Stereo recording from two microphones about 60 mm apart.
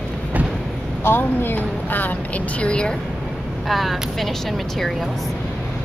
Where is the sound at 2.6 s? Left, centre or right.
Centre.